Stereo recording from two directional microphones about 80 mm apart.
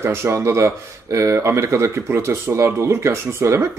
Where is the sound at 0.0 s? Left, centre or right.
Right.